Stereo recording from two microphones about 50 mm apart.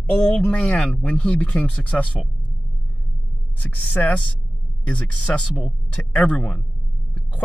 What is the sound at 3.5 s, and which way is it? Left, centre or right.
Speech, left.